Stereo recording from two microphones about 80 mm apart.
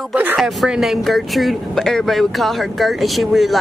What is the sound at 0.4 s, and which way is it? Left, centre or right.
Speech, centre.